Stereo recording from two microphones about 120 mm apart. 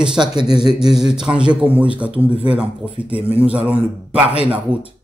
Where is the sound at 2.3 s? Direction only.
45° right (ahead or behind).